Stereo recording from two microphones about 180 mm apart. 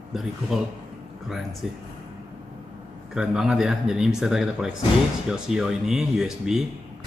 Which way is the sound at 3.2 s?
5° right (ahead or behind).